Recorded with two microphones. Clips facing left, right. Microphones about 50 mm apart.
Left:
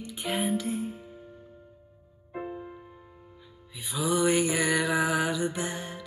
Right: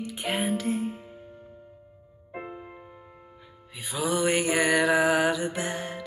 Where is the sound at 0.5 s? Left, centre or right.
Right.